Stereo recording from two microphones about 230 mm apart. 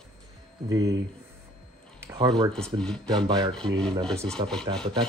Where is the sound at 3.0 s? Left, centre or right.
Centre.